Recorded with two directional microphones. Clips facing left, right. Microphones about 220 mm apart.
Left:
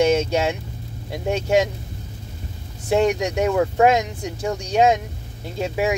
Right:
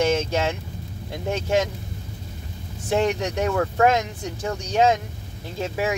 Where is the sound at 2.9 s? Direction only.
10° left (ahead or behind).